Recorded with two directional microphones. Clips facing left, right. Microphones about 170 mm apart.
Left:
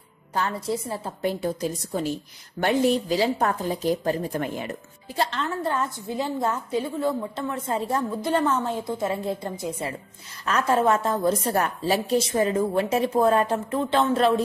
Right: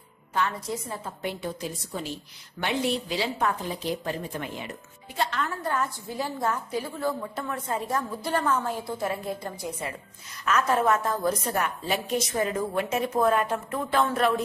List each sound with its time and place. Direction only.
0.3 s a woman's voice: 35° left (ahead or behind)
5.2 s a woman's voice: 30° left (ahead or behind)